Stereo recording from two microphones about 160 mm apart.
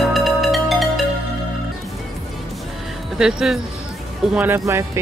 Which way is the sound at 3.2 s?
5° right (ahead or behind).